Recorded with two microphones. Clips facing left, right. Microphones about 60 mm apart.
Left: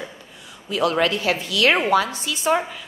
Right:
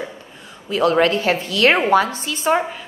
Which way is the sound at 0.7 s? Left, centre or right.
Right.